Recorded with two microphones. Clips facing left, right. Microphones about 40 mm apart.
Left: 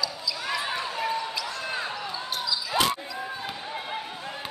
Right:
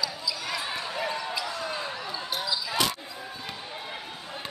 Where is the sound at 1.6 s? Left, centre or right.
Centre.